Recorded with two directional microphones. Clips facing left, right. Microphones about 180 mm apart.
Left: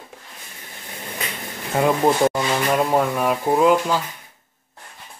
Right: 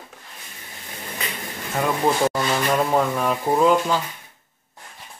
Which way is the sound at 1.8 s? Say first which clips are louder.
Left 3 dB; 20° left (ahead or behind).